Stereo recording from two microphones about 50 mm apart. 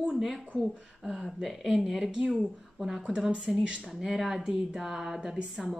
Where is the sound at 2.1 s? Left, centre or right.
Right.